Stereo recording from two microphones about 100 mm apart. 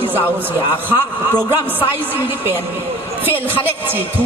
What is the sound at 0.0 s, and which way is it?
A man's voice, 20° right (ahead or behind).